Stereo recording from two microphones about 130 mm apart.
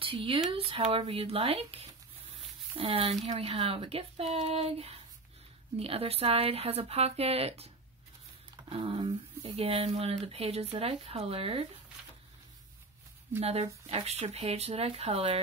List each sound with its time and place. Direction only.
0.0 s speech: 40° right (ahead or behind)
13.4 s speech: 50° right (ahead or behind)